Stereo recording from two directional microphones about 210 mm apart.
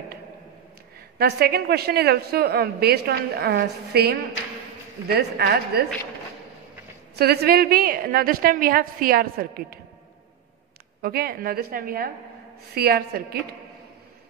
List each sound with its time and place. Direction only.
1.1 s a woman's voice: 50° right (ahead or behind)
7.2 s a woman's voice: 50° right (ahead or behind)
11.0 s a woman's voice: 45° right (ahead or behind)